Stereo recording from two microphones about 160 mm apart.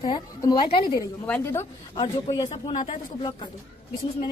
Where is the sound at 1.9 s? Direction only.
40° left (ahead or behind).